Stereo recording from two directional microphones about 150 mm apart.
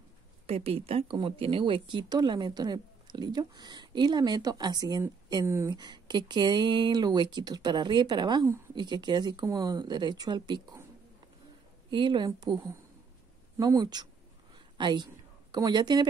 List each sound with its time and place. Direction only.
0.5 s speech: 40° right (ahead or behind); by 5.8 s 20° right (ahead or behind)
5.8 s speech: 30° right (ahead or behind)
11.9 s speech: 30° right (ahead or behind)